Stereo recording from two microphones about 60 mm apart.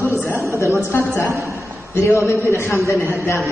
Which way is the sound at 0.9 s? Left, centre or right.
Left.